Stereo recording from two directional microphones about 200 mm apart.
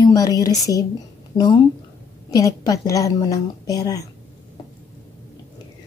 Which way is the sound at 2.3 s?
20° left (ahead or behind).